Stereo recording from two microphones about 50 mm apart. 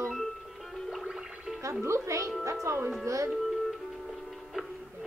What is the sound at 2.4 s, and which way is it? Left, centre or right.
Speech, right.